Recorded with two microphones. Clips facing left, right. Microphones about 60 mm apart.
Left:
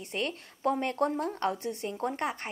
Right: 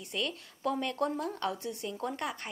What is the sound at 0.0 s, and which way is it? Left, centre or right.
Speech, left.